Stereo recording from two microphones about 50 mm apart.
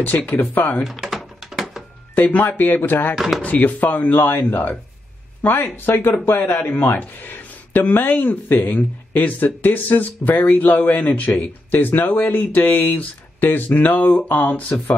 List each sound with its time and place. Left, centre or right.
0.3 s speech: left
1.0 s typing: centre
2.1 s speech: left
3.2 s speech: centre
3.4 s speech: left